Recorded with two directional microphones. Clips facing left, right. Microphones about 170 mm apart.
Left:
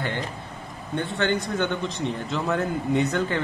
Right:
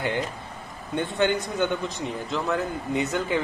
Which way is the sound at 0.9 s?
15° right (ahead or behind).